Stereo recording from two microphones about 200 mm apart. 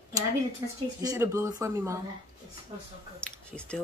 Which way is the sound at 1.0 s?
15° right (ahead or behind).